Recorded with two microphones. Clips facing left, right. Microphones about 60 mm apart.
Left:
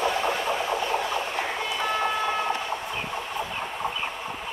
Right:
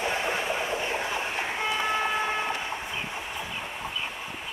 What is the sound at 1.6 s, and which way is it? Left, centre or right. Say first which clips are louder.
Vehicle: right 1 dB; right.